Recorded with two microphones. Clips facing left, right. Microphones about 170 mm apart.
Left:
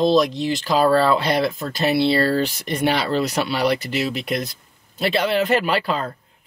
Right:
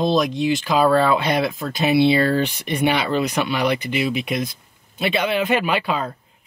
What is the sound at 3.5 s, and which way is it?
Speech, 35° left (ahead or behind).